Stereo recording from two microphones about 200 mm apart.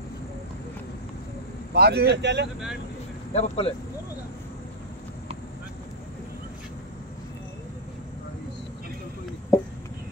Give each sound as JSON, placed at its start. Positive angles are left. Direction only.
{"t": 1.7, "sound": "speech", "side_deg": -55}
{"t": 3.3, "sound": "speech", "side_deg": 30}